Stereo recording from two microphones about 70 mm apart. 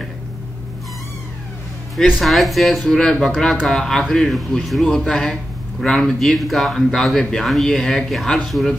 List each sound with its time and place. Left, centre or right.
2.0 s speech: centre